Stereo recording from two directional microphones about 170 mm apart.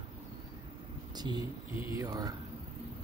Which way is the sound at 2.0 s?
20° right (ahead or behind).